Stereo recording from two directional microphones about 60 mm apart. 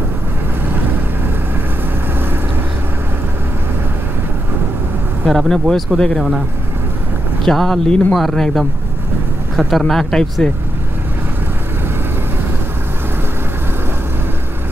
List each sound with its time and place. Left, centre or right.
0.7 s boat: right
5.5 s speech: centre
7.4 s speech: centre